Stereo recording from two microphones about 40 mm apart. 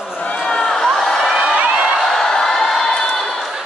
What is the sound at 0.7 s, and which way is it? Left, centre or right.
Crowd, centre.